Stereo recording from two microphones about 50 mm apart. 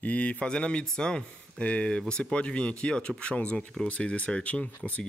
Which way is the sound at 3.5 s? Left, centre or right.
Centre.